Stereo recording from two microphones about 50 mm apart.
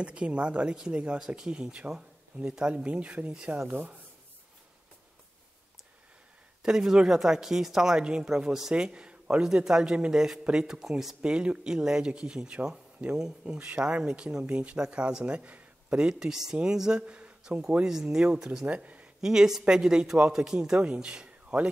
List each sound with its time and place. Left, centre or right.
0.0 s speech: right
6.6 s a woman's voice: centre
11.2 s a woman's voice: centre
17.0 s a woman's voice: right
18.7 s speech: right
19.2 s a woman's voice: centre